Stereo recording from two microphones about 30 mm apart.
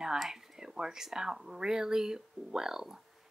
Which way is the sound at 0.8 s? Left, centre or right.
Right.